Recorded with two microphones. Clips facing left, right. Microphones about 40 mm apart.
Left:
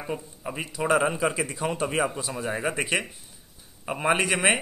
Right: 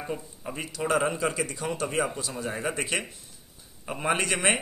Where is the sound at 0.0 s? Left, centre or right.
Centre.